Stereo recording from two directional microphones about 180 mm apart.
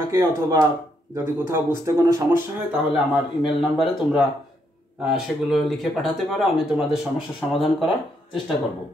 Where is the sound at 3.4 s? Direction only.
Centre (ahead or behind).